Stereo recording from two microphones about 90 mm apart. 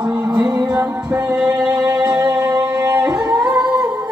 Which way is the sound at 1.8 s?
45° right (ahead or behind).